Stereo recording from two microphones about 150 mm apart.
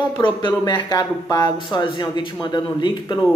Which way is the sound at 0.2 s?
30° left (ahead or behind).